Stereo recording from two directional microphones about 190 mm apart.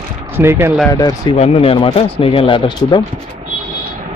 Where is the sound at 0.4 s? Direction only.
15° right (ahead or behind).